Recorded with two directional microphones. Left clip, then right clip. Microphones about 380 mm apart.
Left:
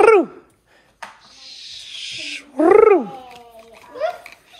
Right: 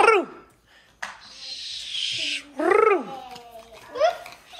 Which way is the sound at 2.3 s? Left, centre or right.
Centre.